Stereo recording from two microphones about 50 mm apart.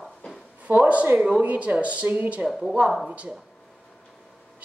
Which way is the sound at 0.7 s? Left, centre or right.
Right.